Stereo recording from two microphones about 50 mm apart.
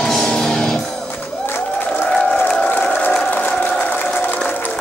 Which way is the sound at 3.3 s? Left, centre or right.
Left.